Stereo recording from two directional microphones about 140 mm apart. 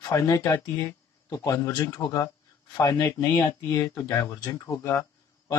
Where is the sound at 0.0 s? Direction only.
20° left (ahead or behind).